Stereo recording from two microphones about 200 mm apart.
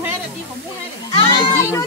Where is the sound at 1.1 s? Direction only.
30° left (ahead or behind).